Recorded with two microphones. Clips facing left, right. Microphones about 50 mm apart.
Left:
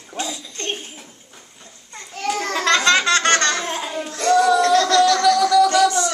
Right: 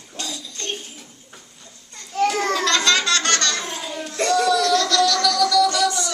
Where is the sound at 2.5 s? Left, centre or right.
Left.